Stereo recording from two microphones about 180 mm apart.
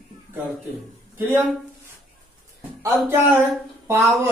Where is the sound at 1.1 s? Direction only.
10° right (ahead or behind).